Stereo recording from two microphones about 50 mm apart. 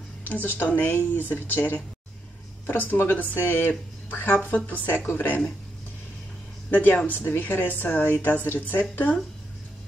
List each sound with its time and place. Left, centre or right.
0.2 s speech: left
6.7 s speech: left